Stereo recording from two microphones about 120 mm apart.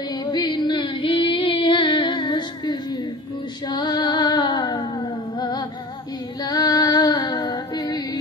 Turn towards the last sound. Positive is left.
turn(degrees=35)  # may be behind; listen again after turning